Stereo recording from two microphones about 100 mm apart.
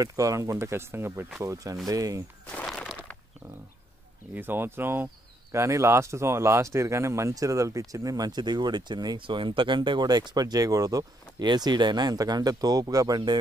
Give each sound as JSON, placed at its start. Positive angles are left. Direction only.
{"t": 0.0, "sound": "speech", "side_deg": -35}
{"t": 2.5, "sound": "a sound", "side_deg": 10}
{"t": 4.4, "sound": "speech", "side_deg": -20}